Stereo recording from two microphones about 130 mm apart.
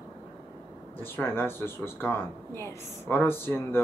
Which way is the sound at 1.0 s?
15° left (ahead or behind).